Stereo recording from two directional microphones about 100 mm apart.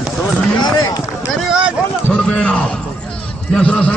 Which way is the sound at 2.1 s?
10° left (ahead or behind).